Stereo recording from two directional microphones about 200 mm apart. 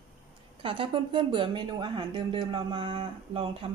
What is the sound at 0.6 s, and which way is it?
Speech, 25° right (ahead or behind).